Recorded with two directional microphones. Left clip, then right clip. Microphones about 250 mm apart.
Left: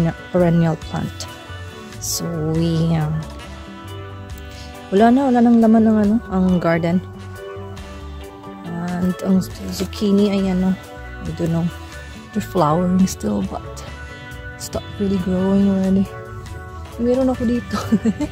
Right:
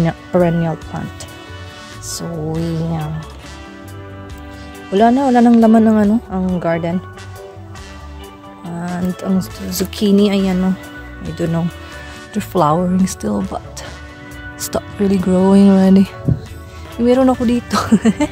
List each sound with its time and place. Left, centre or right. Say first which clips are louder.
0.0 s speech: right 3 dB; centre
0.6 s speech: even; centre
2.1 s speech: even; centre
4.9 s speech: right 2 dB; centre
5.2 s speech: right 4 dB; centre
6.0 s speech: right 1 dB; centre
9.1 s speech: left 2 dB; centre
9.7 s speech: right 5 dB; centre
14.7 s speech: right 6 dB; centre
17.0 s speech: right 5 dB; right